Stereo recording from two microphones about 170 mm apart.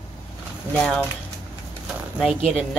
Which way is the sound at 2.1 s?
Centre (ahead or behind).